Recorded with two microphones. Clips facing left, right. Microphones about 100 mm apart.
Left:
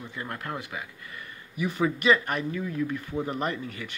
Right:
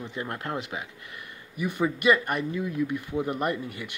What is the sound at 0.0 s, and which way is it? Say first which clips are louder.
Speech: right 3 dB; 20° right (ahead or behind).